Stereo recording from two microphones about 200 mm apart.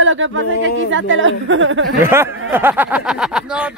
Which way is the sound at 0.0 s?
70° right (ahead or behind).